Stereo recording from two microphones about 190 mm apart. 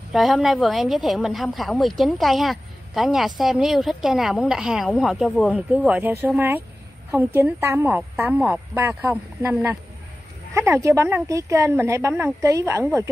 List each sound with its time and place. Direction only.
0.1 s a woman's voice: centre (ahead or behind)